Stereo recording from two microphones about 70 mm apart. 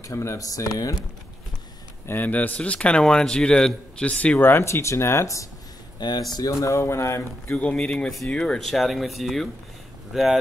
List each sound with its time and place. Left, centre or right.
0.0 s speech: left
2.0 s a man's voice: left
4.4 s speech: left
5.9 s speech: left
6.6 s speech: left
7.5 s a man's voice: centre